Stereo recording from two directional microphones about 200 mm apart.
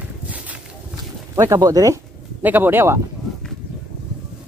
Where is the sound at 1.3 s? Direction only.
15° right (ahead or behind).